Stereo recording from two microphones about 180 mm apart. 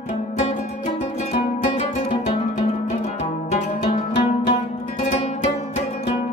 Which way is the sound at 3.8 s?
40° left (ahead or behind).